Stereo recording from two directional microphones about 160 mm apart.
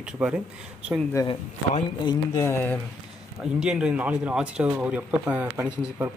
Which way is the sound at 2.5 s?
15° left (ahead or behind).